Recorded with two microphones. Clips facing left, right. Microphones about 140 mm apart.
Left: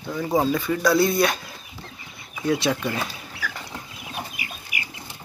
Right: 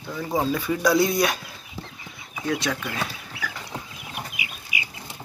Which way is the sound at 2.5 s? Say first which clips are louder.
Left 4 dB; 25° left (ahead or behind).